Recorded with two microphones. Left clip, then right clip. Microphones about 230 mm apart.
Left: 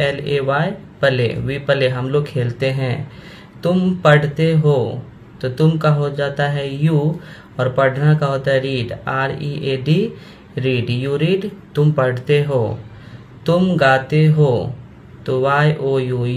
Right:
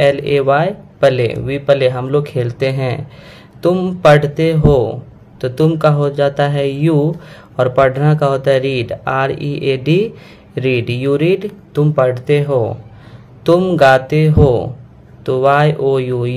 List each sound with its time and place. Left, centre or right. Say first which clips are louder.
0.0 s speech: right 6 dB; right